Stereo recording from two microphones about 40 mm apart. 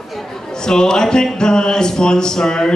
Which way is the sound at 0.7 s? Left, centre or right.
Centre.